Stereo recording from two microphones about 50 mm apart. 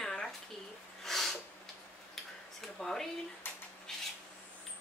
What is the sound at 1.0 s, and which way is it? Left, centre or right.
Snort, centre.